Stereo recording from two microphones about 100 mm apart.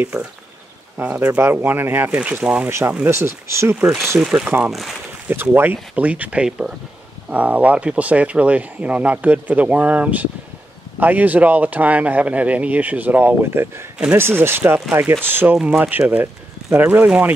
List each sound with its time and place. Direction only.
0.0 s speech: 10° right (ahead or behind)
3.1 s speech: 25° right (ahead or behind)
3.8 s speech: 5° right (ahead or behind)
5.3 s speech: 20° right (ahead or behind)